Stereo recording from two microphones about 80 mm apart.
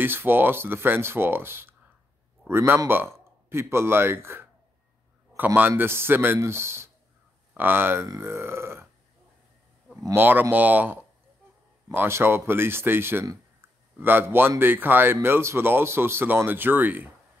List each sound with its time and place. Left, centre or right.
0.0 s speech: right
10.1 s speech: right
13.6 s a sound: right
14.6 s speech: right